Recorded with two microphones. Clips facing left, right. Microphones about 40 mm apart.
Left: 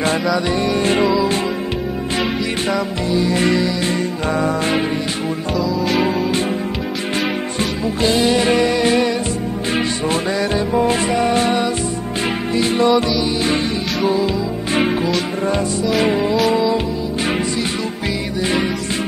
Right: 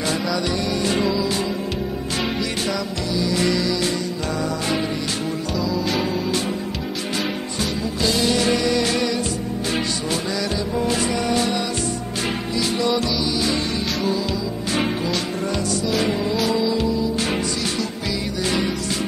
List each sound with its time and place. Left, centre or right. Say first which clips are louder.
0.5 s music: left 5 dB; left
2.7 s music: left 6 dB; left
5.6 s music: left 5 dB; centre
7.8 s music: left 5 dB; left
14.7 s music: left 5 dB; left
16.0 s music: left 5 dB; left